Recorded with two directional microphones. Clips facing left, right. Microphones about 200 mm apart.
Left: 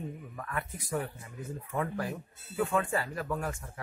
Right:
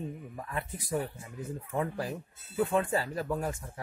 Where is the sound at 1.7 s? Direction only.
30° right (ahead or behind).